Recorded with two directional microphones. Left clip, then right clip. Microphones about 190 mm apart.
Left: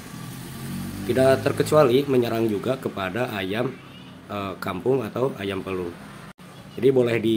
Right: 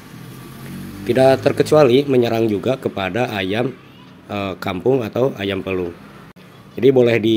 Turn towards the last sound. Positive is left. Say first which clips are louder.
# right 6 dB
turn(degrees=-25)  # may be behind; listen again after turning